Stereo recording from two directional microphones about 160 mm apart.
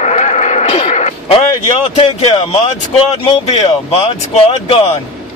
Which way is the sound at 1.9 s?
40° left (ahead or behind).